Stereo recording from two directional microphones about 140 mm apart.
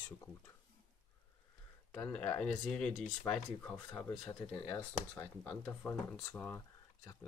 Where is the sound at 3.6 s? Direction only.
15° left (ahead or behind).